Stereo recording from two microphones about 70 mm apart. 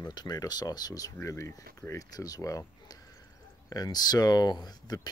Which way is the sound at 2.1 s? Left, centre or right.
Left.